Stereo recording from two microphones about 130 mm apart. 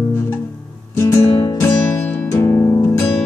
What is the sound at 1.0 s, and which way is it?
Music, 20° left (ahead or behind).